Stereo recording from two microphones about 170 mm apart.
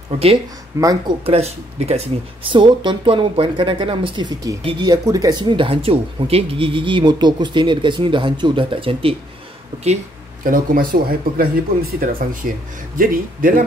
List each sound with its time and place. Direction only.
0.7 s speech: 20° right (ahead or behind)
1.2 s speech: 35° right (ahead or behind)
10.4 s speech: 55° right (ahead or behind)